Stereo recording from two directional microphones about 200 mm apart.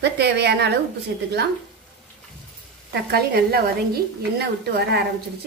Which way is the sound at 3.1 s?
50° right (ahead or behind).